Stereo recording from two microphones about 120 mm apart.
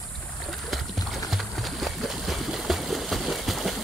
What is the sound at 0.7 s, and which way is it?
Music, centre (ahead or behind).